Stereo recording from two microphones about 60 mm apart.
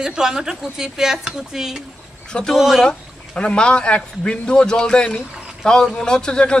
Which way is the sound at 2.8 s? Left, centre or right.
Centre.